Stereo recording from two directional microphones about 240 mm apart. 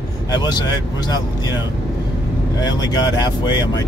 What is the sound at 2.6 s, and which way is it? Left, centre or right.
Speech, centre.